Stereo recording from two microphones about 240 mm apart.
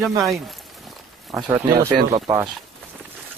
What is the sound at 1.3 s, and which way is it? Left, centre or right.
Speech, centre.